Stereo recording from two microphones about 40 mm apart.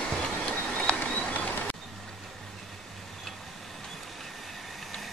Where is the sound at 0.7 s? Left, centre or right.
Left.